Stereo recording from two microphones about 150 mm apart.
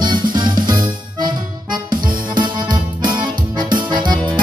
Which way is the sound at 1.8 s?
70° right (ahead or behind).